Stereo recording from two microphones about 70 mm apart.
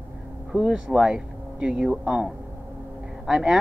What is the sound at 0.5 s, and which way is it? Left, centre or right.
Speech, centre.